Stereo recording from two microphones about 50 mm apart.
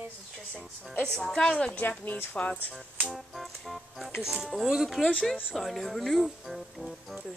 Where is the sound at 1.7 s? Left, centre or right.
Left.